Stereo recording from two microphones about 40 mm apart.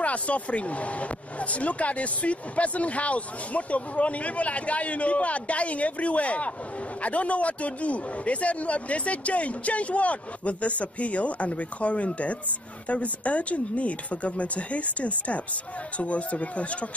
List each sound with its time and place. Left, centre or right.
0.0 s speech: left